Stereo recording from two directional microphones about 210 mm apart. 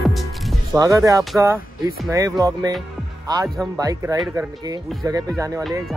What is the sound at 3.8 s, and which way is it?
Speech, 15° right (ahead or behind).